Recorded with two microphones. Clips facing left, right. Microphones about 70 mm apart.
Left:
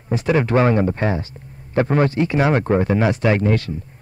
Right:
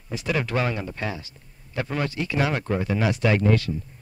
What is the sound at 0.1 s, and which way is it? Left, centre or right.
A man's voice, left.